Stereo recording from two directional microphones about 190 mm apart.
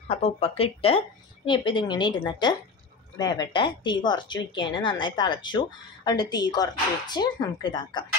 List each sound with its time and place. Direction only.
0.1 s speech: 30° left (ahead or behind)